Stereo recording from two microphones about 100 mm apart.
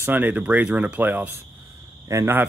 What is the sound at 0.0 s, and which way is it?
Speech, 15° right (ahead or behind).